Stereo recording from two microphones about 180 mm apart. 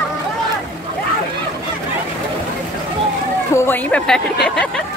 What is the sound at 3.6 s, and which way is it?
Speech, 10° left (ahead or behind).